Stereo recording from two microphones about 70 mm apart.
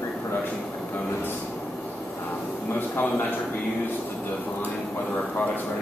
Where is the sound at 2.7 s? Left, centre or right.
Left.